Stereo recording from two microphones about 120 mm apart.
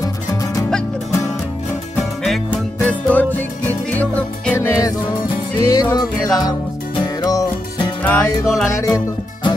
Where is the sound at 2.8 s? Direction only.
10° left (ahead or behind).